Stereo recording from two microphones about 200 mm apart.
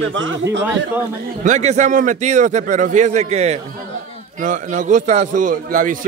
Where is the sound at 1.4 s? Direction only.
35° right (ahead or behind).